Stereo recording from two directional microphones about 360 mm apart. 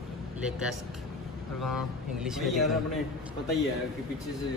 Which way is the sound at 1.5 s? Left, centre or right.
Centre.